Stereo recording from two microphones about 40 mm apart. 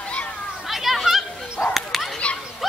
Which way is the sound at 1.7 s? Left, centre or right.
Centre.